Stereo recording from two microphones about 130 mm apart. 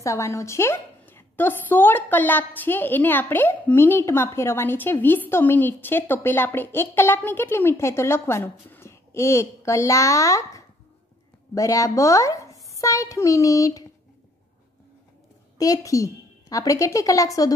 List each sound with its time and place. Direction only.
0.0 s a woman's voice: 20° left (ahead or behind)
15.5 s a woman's voice: 25° left (ahead or behind)